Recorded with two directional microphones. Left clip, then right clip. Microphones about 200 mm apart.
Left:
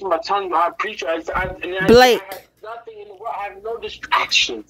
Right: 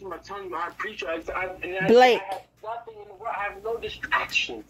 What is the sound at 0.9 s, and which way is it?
Speech, 30° left (ahead or behind).